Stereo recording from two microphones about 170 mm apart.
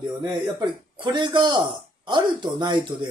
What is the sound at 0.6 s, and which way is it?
Speech, 25° right (ahead or behind).